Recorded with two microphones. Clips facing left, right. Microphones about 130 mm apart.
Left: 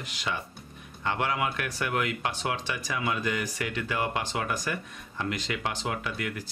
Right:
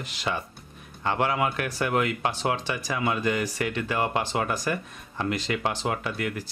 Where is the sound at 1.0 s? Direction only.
35° right (ahead or behind).